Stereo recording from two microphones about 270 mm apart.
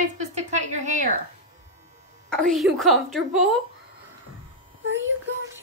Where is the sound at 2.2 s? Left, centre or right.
Centre.